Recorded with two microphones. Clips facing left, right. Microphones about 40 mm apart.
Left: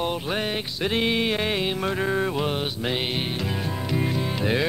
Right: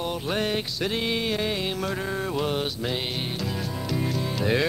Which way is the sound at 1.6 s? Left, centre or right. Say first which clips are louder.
Left 3 dB; left.